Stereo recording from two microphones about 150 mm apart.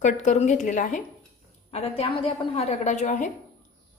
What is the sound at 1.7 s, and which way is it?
A woman's voice, 40° left (ahead or behind).